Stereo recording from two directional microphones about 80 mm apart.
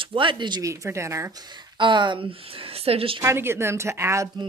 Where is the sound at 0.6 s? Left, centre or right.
Right.